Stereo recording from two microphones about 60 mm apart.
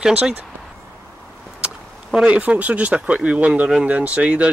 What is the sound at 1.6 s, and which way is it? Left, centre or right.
Speech, centre.